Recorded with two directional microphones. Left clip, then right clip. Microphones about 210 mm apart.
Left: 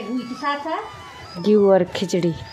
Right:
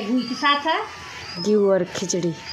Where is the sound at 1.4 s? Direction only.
15° left (ahead or behind).